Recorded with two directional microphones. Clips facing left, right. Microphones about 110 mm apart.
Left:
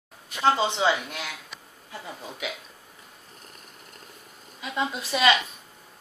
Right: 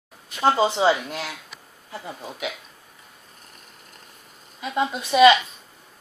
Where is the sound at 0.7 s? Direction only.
30° right (ahead or behind).